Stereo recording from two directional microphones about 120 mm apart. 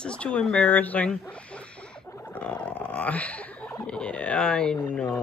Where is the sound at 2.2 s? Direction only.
10° left (ahead or behind).